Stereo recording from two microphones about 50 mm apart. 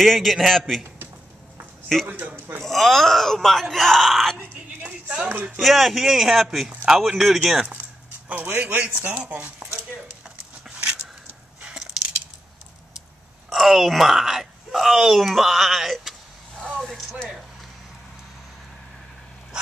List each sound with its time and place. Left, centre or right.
0.0 s speech: centre
2.0 s a man's voice: right
2.6 s speech: centre
5.0 s speech: centre
5.6 s speech: centre
8.3 s speech: right
10.7 s a sound: centre
13.5 s speech: centre